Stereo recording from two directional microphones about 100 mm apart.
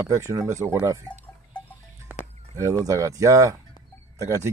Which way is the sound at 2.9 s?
35° right (ahead or behind).